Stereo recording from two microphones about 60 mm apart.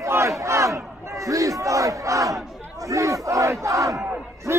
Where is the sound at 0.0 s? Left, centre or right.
Right.